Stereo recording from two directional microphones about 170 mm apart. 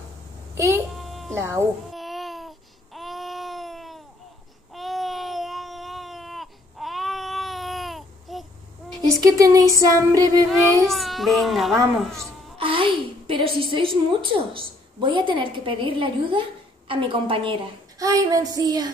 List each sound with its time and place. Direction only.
0.9 s a sound: centre (ahead or behind)
1.4 s speech: 15° right (ahead or behind)
1.9 s babbling: centre (ahead or behind)
4.7 s baby cry: centre (ahead or behind)
9.0 s a sound: 20° right (ahead or behind)
10.8 s a child's voice: centre (ahead or behind)
12.5 s a woman's voice: 30° right (ahead or behind)